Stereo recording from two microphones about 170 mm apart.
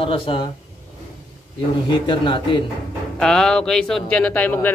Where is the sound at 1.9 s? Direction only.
30° left (ahead or behind).